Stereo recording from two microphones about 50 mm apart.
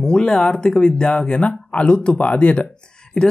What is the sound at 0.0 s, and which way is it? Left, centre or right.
Speech, centre.